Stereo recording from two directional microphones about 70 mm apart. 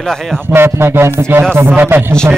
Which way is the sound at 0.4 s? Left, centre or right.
Right.